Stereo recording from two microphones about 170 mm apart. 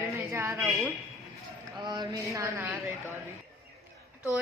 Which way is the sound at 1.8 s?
25° right (ahead or behind).